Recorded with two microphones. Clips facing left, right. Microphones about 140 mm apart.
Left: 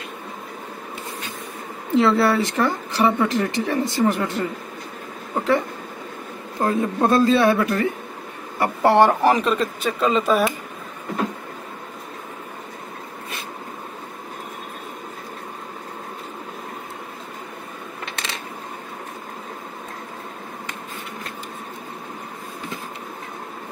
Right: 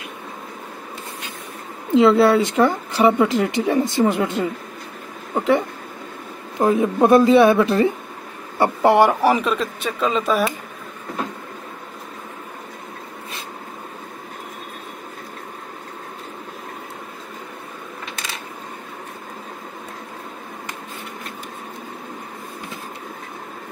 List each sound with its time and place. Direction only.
2.0 s speech: 20° right (ahead or behind)
6.6 s speech: 15° right (ahead or behind)
8.8 s speech: 10° right (ahead or behind)